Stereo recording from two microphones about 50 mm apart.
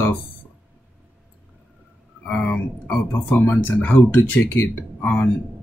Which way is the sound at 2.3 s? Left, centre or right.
Left.